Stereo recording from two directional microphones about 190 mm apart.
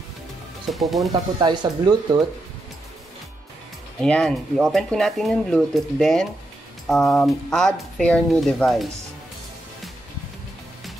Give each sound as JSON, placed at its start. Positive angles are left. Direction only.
{"t": 0.7, "sound": "speech", "side_deg": 0}
{"t": 1.4, "sound": "speech", "side_deg": -25}
{"t": 4.0, "sound": "speech", "side_deg": 5}